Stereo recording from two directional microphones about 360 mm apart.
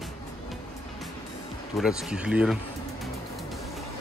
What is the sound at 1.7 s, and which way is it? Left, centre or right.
Speech, centre.